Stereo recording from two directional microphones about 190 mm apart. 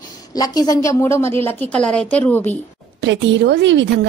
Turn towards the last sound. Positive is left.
turn(degrees=-70)  # may be behind; listen again after turning